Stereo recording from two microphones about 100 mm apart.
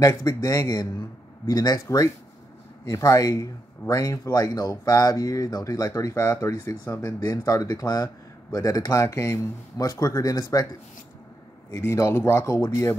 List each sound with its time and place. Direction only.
0.0 s speech: 35° left (ahead or behind)
11.7 s speech: 30° left (ahead or behind)